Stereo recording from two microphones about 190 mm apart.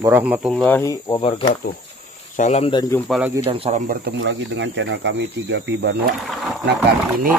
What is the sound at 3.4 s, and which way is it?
Speech, 35° right (ahead or behind).